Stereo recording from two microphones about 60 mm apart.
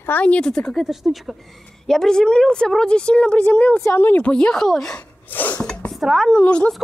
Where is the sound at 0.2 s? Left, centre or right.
Left.